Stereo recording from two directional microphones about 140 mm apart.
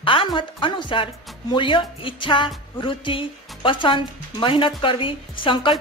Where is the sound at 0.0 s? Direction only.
35° left (ahead or behind).